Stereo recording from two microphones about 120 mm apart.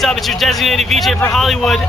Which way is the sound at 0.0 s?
Centre (ahead or behind).